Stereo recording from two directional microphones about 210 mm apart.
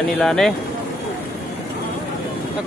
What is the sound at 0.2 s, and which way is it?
Speech, centre (ahead or behind).